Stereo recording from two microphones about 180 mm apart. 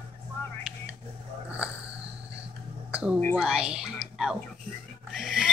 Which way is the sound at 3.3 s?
5° right (ahead or behind).